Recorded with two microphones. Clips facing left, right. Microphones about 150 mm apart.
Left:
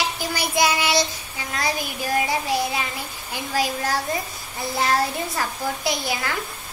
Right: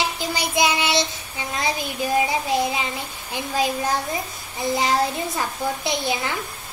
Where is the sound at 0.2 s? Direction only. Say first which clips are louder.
Left 1 dB; 20° right (ahead or behind).